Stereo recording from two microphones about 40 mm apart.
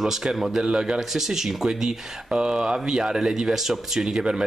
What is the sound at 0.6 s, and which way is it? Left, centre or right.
Speech, right.